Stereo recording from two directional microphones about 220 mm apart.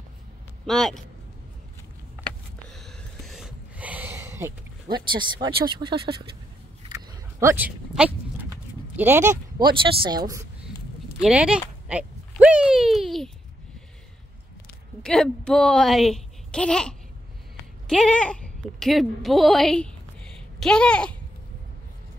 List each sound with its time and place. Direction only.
0.7 s speech: centre (ahead or behind)
2.2 s a sound: centre (ahead or behind)
10.0 s speech: 15° right (ahead or behind)
11.1 s speech: 5° right (ahead or behind)
11.9 s a sound: 5° right (ahead or behind)
15.0 s speech: 5° left (ahead or behind)